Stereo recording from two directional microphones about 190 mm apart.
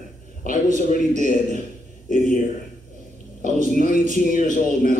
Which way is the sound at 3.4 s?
45° left (ahead or behind).